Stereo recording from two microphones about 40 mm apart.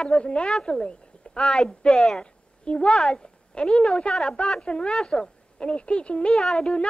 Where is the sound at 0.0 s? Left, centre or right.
Left.